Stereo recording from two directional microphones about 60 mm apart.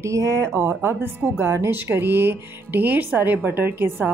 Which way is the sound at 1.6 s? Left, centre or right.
Right.